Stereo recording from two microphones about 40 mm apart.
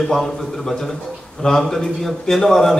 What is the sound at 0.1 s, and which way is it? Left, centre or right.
A man's voice, centre.